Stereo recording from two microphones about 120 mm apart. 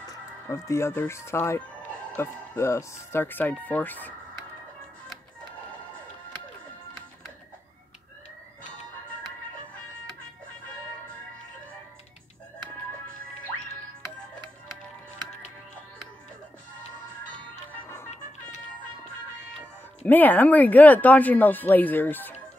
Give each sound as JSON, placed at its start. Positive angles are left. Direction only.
{"t": 0.5, "sound": "speech", "side_deg": 25}
{"t": 17.8, "sound": "music", "side_deg": 20}
{"t": 20.1, "sound": "speech", "side_deg": 15}